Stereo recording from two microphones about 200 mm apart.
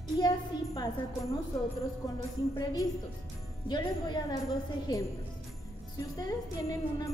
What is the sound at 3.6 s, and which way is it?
Jingle bell, 20° left (ahead or behind).